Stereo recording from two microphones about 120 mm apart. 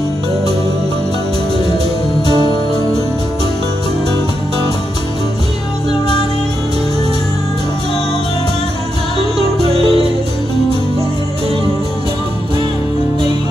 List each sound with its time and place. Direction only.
9.4 s music: 55° right (ahead or behind)